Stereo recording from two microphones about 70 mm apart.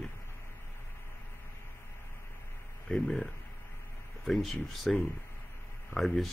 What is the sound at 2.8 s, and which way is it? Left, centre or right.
Speech, centre.